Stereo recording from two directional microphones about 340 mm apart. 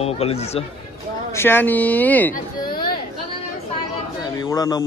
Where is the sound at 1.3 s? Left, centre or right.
Centre.